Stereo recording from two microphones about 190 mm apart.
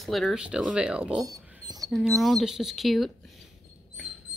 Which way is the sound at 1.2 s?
20° right (ahead or behind).